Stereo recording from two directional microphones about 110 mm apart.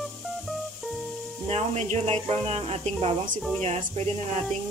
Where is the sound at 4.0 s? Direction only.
90° right.